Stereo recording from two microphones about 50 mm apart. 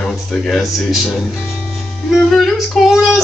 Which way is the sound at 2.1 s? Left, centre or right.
Centre.